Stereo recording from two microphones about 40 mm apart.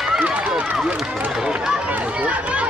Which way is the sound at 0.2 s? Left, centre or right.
Right.